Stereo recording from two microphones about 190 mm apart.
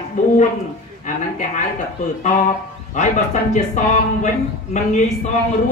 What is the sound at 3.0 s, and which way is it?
Speech, 40° left (ahead or behind).